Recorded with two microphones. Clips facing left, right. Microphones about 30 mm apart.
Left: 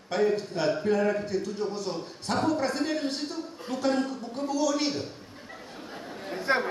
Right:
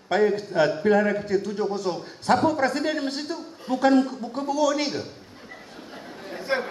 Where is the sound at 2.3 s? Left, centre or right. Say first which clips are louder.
Right 6 dB; right.